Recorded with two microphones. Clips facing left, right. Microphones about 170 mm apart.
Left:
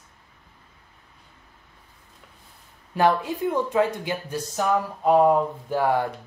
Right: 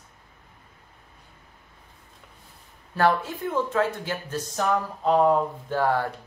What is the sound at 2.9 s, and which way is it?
Speech, 15° left (ahead or behind).